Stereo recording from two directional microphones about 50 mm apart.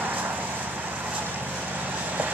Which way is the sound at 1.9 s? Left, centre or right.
Right.